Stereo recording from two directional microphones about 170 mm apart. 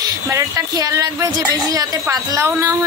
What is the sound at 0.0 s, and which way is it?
A woman's voice, 20° right (ahead or behind).